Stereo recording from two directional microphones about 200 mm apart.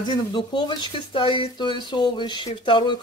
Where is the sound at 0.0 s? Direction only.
20° left (ahead or behind).